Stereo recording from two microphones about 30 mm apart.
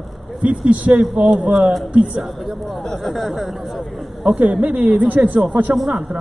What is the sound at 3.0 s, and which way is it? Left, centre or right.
Speech, centre.